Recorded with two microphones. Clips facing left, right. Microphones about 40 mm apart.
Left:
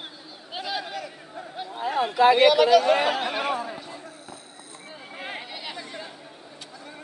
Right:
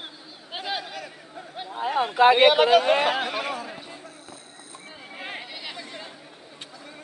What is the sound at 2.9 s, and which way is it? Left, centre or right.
Speech, centre.